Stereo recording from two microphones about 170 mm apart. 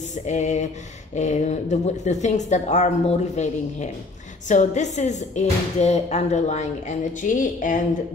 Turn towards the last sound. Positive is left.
turn(degrees=50)  # may be behind; listen again after turning